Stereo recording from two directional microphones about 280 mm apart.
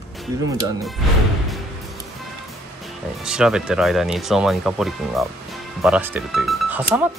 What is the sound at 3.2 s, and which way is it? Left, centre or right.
Speech, centre.